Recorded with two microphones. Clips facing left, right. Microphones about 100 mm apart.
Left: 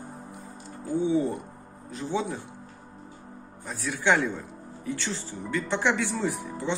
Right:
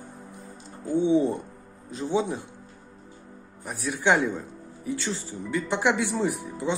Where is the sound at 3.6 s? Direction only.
20° right (ahead or behind).